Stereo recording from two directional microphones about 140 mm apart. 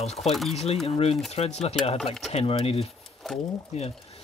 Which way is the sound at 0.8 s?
45° left (ahead or behind).